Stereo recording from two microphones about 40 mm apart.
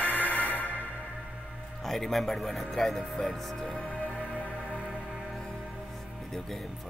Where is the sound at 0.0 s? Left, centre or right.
Left.